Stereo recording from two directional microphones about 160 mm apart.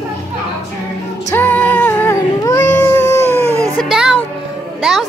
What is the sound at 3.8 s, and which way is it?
Music, centre (ahead or behind).